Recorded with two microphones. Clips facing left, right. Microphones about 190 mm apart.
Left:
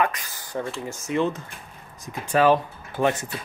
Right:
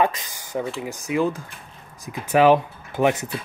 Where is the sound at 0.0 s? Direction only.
20° right (ahead or behind).